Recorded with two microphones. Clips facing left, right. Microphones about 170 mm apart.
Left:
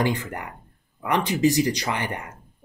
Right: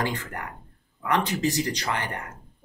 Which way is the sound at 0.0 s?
15° left (ahead or behind).